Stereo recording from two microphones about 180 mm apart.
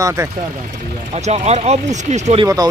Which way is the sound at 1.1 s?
35° right (ahead or behind).